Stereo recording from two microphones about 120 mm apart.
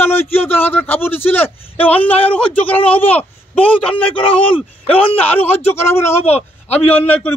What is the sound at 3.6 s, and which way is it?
Speech, 50° left (ahead or behind).